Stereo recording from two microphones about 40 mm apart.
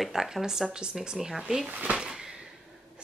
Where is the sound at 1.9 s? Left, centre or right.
Centre.